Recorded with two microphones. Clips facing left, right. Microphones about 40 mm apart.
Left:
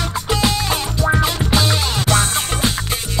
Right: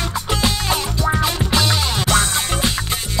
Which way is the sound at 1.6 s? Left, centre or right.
Right.